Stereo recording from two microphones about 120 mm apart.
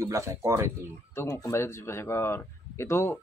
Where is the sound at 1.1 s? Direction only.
25° left (ahead or behind).